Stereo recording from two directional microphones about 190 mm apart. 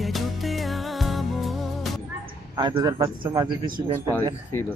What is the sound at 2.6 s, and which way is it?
A man's voice, 20° right (ahead or behind).